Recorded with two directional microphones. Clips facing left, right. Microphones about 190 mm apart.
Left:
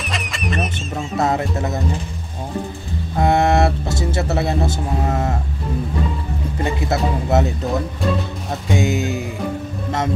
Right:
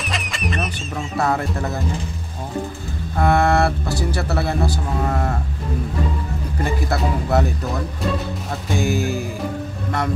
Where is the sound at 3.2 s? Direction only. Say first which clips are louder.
Left 1 dB; 20° left (ahead or behind).